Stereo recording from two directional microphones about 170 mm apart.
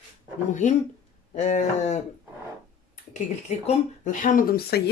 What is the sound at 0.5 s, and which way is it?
Speech, 45° left (ahead or behind).